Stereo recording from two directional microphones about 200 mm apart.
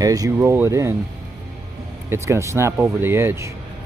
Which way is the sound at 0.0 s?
15° right (ahead or behind).